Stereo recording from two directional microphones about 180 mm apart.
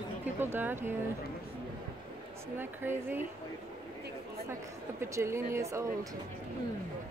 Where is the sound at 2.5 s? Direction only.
10° right (ahead or behind).